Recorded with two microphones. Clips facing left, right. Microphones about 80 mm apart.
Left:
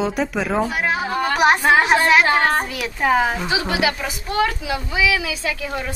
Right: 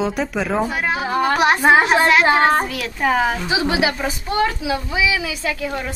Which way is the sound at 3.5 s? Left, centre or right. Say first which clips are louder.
Right 2 dB; centre.